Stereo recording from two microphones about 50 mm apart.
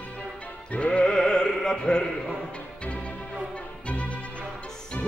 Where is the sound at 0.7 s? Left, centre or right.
Left.